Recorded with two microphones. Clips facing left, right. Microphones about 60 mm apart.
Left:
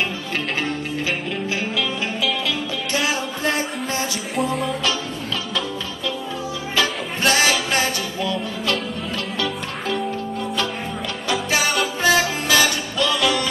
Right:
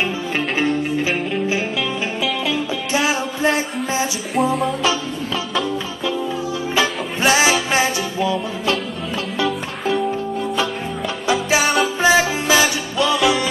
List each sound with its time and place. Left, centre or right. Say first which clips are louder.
1.5 s music: right 2 dB; centre
3.0 s music: right 4 dB; centre
6.7 s music: right 1 dB; centre
11.2 s music: right 4 dB; centre
12.0 s music: right 2 dB; centre